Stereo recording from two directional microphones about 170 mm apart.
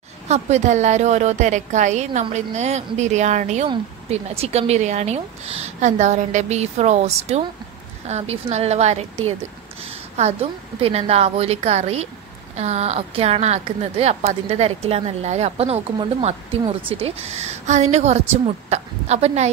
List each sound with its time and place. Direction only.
0.3 s a woman's voice: 40° right (ahead or behind)
3.6 s a woman's voice: 35° right (ahead or behind)